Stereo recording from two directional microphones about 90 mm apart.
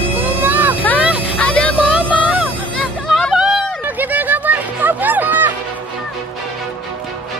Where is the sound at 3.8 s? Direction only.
20° right (ahead or behind).